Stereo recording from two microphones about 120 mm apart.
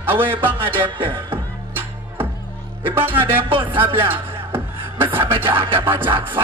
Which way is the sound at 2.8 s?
15° right (ahead or behind).